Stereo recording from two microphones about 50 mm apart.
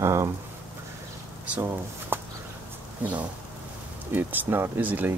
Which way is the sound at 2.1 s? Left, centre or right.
Right.